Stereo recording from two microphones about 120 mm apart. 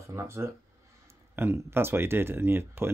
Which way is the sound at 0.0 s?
25° right (ahead or behind).